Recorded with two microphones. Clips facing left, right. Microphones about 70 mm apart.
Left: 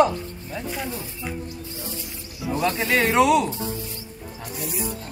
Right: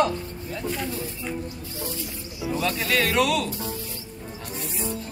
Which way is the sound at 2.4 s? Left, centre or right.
Left.